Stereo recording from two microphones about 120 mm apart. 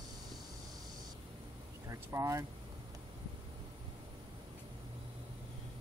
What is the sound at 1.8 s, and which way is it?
Speech, 25° right (ahead or behind).